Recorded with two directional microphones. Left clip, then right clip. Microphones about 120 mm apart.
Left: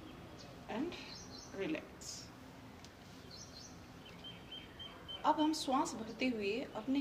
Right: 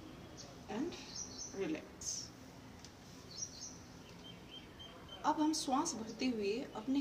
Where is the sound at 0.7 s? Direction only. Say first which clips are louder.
Left 1 dB; 35° right (ahead or behind).